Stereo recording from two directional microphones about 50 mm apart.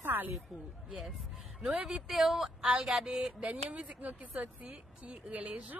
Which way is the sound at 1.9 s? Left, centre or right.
Centre.